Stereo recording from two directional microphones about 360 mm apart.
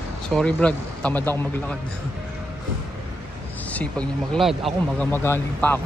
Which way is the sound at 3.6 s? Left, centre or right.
Centre.